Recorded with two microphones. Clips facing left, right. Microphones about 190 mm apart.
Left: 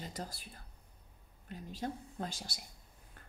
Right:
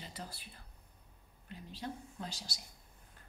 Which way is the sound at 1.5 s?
45° left (ahead or behind).